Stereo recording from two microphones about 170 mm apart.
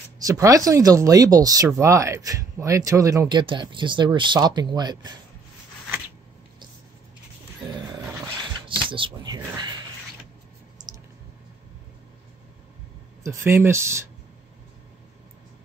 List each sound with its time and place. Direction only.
0.3 s speech: 20° right (ahead or behind)
7.6 s roaring cats: 25° right (ahead or behind)
8.8 s speech: 30° right (ahead or behind)
13.2 s speech: 15° right (ahead or behind)